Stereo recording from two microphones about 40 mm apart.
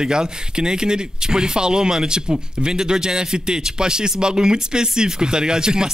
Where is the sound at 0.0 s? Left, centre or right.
Centre.